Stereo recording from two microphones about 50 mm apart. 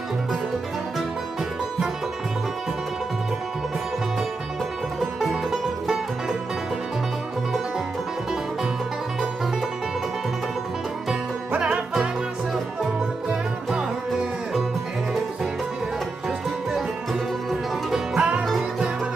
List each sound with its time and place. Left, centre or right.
5.2 s music: centre
11.5 s music: right
13.3 s music: centre
16.7 s music: centre